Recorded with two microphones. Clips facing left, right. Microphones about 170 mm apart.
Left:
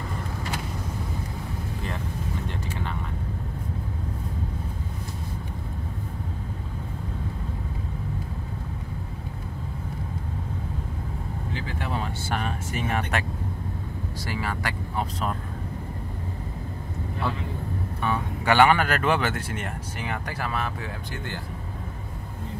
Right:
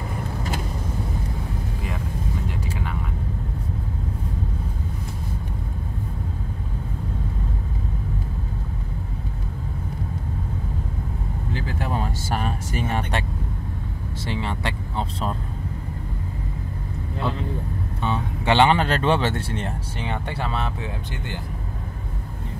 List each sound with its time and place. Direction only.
2.4 s vehicle: 10° right (ahead or behind)
11.5 s vehicle: 40° right (ahead or behind)
14.2 s vehicle: 25° right (ahead or behind)
18.0 s speech: 25° right (ahead or behind)